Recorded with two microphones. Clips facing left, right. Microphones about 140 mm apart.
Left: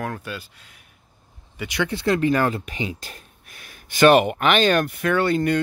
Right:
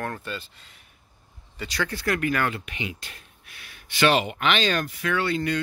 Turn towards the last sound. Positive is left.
turn(degrees=50)  # may be behind; listen again after turning